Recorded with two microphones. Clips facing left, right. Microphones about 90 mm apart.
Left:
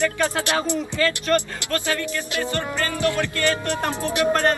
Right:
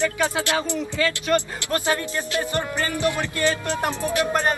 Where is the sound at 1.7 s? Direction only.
20° right (ahead or behind).